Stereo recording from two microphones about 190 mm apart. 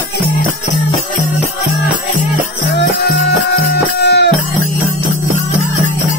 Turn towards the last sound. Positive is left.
turn(degrees=60)  # may be behind; listen again after turning